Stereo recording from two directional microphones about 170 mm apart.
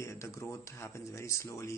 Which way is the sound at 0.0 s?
15° left (ahead or behind).